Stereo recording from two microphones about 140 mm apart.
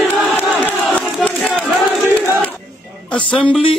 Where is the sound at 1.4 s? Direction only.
Centre (ahead or behind).